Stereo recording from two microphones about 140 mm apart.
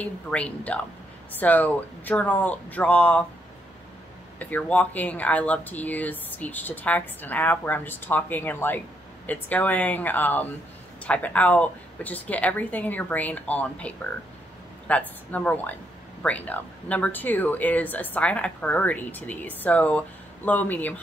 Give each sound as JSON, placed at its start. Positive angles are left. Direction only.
{"t": 0.0, "sound": "speech", "side_deg": 10}
{"t": 4.4, "sound": "speech", "side_deg": 10}